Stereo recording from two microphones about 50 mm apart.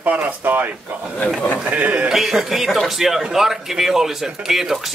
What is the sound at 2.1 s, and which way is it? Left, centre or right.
Speech, centre.